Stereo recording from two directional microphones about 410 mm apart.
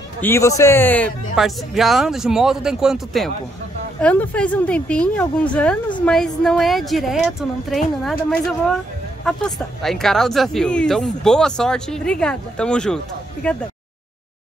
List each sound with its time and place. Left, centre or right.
0.2 s speech: centre